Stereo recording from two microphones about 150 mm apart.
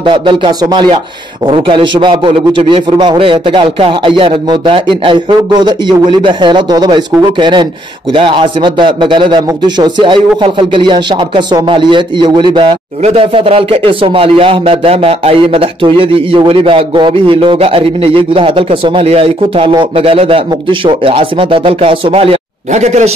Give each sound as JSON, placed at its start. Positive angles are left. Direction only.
{"t": 0.0, "sound": "speech", "side_deg": -30}